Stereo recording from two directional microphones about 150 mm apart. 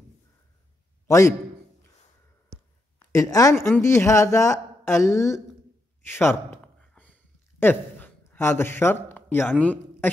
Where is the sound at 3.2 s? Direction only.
20° left (ahead or behind).